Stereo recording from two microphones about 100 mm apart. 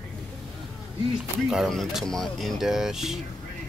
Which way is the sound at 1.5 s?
Centre (ahead or behind).